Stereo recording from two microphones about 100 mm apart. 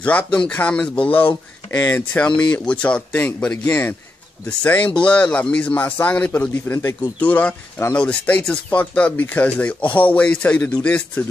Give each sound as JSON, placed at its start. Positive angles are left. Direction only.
{"t": 0.0, "sound": "speech", "side_deg": 15}